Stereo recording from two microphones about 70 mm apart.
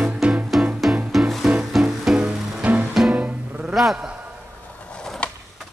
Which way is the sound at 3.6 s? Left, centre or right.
Centre.